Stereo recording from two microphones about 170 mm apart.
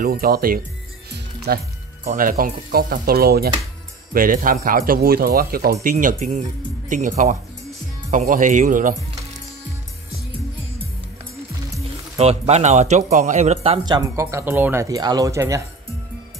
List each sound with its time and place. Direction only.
0.0 s speech: 60° right (ahead or behind)
1.1 s music: 70° right (ahead or behind)
2.0 s speech: 55° right (ahead or behind)
4.1 s speech: 55° right (ahead or behind)
12.2 s speech: 40° right (ahead or behind)
13.8 s speech: 20° right (ahead or behind)